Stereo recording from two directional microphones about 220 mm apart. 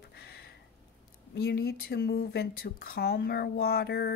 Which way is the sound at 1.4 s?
45° left (ahead or behind).